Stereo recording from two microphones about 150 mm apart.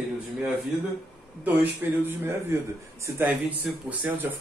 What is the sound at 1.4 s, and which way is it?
A man's voice, 10° right (ahead or behind).